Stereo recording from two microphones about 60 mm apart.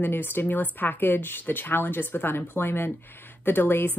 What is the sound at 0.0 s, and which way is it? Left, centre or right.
Speech, left.